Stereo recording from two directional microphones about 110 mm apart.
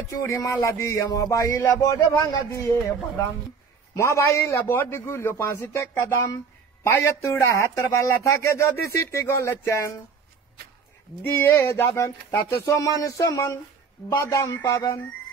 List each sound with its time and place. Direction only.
0.4 s speech: 30° left (ahead or behind)
11.3 s speech: 20° left (ahead or behind)